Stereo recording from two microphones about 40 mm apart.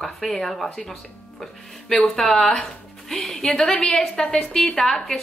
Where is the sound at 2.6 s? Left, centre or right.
Centre.